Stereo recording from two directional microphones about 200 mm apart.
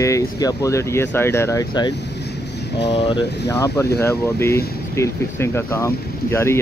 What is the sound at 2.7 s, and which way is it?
Speech, 60° left (ahead or behind).